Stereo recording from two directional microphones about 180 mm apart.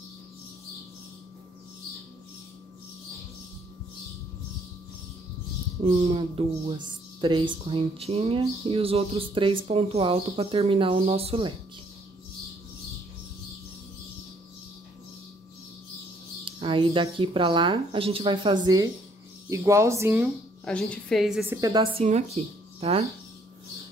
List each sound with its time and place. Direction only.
5.8 s speech: 35° right (ahead or behind)
16.4 s speech: 30° right (ahead or behind)
20.6 s a woman's voice: 5° left (ahead or behind)
21.5 s speech: 20° right (ahead or behind)
22.0 s speech: 35° right (ahead or behind)